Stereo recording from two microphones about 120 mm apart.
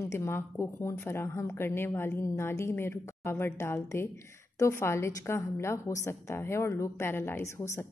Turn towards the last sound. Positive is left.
turn(degrees=20)  # may be behind; listen again after turning